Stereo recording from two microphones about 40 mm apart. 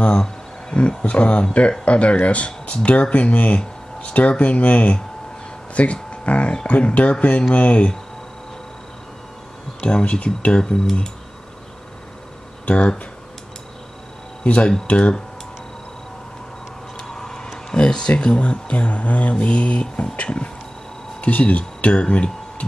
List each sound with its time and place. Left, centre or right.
0.2 s wild animals: left
1.0 s speech: left
9.8 s speech: left
10.6 s speech: centre
12.6 s speech: left
14.4 s speech: left
17.1 s a sound: centre; by 19.3 s left
19.3 s speech: left